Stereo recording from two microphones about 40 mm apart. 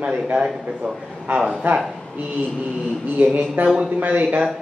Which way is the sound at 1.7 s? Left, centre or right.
Right.